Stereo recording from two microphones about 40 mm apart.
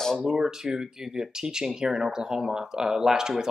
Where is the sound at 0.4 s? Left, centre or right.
Centre.